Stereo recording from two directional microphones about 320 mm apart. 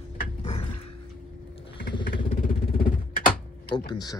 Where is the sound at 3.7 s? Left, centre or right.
Centre.